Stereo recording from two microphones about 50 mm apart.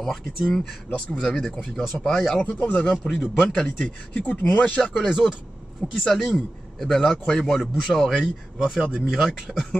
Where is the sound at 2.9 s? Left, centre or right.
Centre.